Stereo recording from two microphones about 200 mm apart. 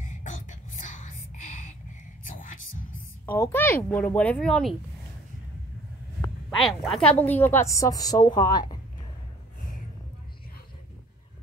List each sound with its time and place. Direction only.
0.1 s a sound: 40° left (ahead or behind)
2.2 s whispering: 45° left (ahead or behind)
3.3 s a woman's voice: 10° left (ahead or behind)
6.5 s a woman's voice: centre (ahead or behind); by 8.7 s 20° left (ahead or behind)